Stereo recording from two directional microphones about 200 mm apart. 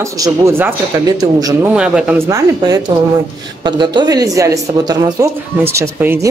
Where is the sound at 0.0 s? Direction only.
15° right (ahead or behind).